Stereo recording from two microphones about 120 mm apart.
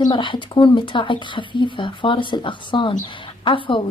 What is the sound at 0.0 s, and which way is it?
A woman's voice, 40° left (ahead or behind).